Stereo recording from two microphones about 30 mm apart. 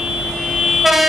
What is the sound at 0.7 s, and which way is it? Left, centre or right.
Vehicle, centre.